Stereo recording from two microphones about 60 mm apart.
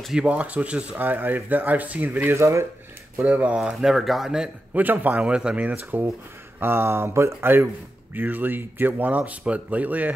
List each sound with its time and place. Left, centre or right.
0.1 s speech: centre
0.9 s a man's voice: right
2.3 s speech: right
3.3 s speech: right
3.6 s speech: centre
4.7 s a man's voice: right